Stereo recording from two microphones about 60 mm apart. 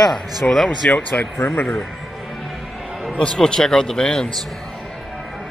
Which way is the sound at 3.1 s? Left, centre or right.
Centre.